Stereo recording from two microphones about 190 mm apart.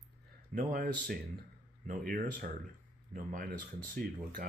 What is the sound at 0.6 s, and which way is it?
Speech, 50° right (ahead or behind).